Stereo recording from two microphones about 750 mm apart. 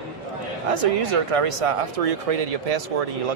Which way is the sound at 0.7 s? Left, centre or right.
Right.